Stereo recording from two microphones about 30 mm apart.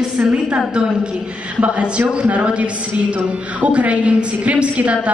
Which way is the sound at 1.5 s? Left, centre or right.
Right.